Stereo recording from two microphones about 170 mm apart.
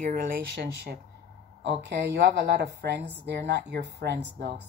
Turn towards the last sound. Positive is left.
turn(degrees=-85)